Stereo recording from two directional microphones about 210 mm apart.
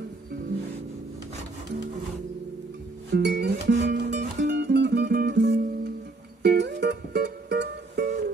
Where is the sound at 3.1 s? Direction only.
55° right (ahead or behind).